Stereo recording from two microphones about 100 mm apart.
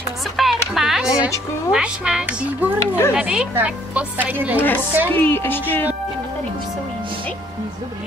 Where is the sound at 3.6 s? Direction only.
20° right (ahead or behind).